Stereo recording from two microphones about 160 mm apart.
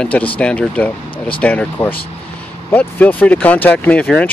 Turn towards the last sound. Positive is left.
turn(degrees=5)  # may be behind; listen again after turning